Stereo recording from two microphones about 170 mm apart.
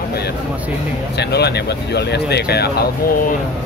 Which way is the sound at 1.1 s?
75° left (ahead or behind).